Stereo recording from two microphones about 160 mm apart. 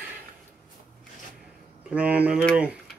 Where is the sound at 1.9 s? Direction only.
10° right (ahead or behind).